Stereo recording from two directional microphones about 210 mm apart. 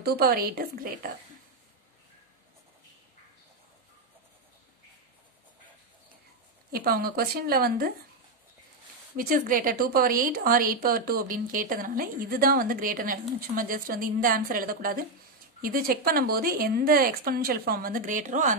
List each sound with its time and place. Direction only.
0.0 s speech: 45° right (ahead or behind)
6.7 s speech: 45° right (ahead or behind)
9.1 s speech: 45° right (ahead or behind)